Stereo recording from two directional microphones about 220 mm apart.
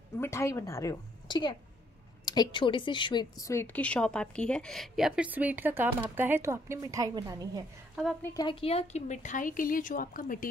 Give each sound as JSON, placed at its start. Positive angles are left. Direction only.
{"t": 0.2, "sound": "a woman's voice", "side_deg": 10}
{"t": 7.9, "sound": "a woman's voice", "side_deg": 0}
{"t": 8.2, "sound": "speech", "side_deg": 15}